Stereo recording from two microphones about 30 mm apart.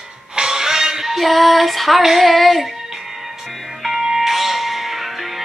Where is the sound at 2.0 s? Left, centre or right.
Centre.